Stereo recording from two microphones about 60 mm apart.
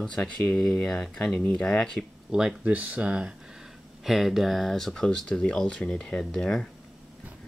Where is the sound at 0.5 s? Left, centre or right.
Centre.